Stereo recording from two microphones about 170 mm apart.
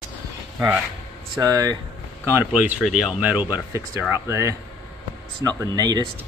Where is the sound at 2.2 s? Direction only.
10° right (ahead or behind).